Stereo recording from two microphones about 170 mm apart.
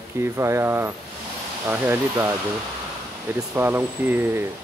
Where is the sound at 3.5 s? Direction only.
15° right (ahead or behind).